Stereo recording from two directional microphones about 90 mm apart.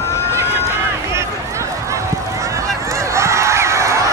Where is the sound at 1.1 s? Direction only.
35° right (ahead or behind).